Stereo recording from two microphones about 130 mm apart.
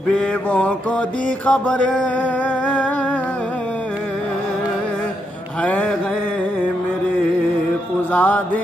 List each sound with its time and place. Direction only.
0.5 s mantra: 10° left (ahead or behind)
2.6 s humming: 10° left (ahead or behind)
5.6 s mantra: 10° left (ahead or behind)
8.1 s music: 15° left (ahead or behind)